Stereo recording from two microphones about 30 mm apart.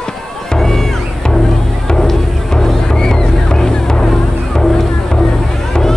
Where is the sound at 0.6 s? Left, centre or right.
Centre.